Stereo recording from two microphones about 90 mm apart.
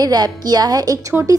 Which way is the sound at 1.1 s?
30° right (ahead or behind).